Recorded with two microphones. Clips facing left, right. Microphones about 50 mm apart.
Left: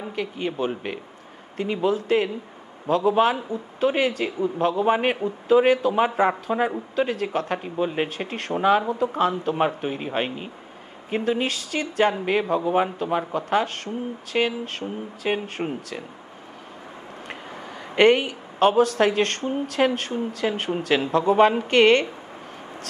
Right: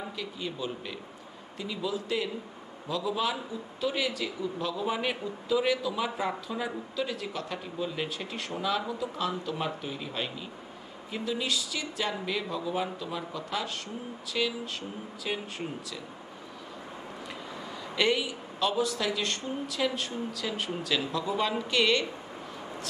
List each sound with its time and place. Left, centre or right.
0.1 s a man's voice: left
17.9 s speech: left